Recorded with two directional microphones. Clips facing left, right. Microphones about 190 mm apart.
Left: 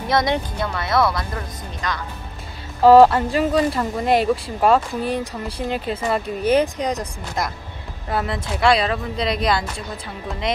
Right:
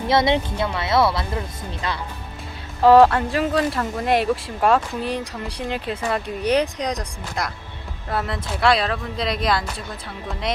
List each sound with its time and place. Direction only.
0.1 s speech: 25° right (ahead or behind)
2.8 s speech: centre (ahead or behind)